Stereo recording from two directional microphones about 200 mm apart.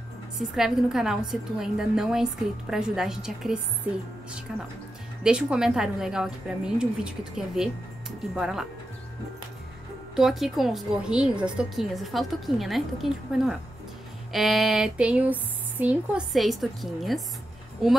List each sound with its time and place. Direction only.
0.4 s a woman's voice: centre (ahead or behind)
5.2 s a woman's voice: 5° right (ahead or behind)
10.1 s a woman's voice: centre (ahead or behind)